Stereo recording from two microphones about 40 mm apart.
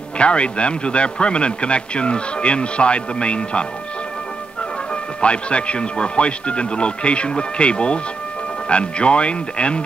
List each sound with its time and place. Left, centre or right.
0.2 s a man's voice: left
5.2 s a man's voice: left